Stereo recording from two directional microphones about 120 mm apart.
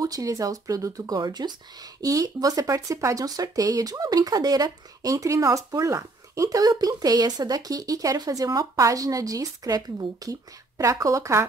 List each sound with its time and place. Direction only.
0.0 s speech: 30° right (ahead or behind)